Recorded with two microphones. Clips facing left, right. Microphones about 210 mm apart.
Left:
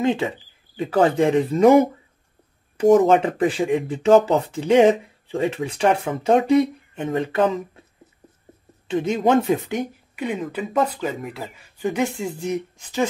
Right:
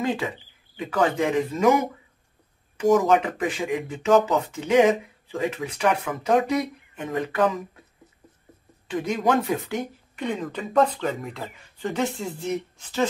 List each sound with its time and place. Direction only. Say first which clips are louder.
0.0 s speech: left 5 dB; 25° left (ahead or behind)
8.8 s speech: left 4 dB; 25° left (ahead or behind)
10.1 s speech: left 2 dB; 10° left (ahead or behind)